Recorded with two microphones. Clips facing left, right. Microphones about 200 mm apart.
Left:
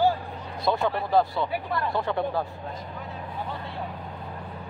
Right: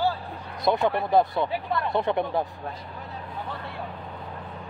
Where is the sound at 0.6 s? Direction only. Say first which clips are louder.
Right 2 dB; 20° right (ahead or behind).